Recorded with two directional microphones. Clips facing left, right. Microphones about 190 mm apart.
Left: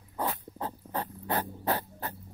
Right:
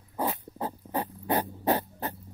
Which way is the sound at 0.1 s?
15° right (ahead or behind).